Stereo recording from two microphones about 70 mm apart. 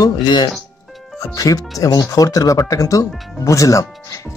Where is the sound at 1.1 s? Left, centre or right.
Left.